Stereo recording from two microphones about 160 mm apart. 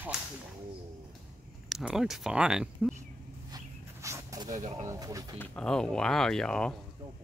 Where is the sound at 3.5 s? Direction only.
20° right (ahead or behind).